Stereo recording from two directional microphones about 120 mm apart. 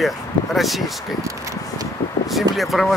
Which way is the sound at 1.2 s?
25° right (ahead or behind).